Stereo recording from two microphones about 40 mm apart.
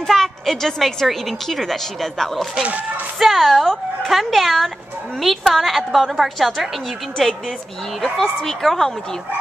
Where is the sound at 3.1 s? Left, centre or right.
Centre.